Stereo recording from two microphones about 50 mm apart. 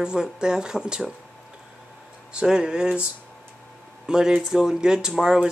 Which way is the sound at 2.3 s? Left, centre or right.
Centre.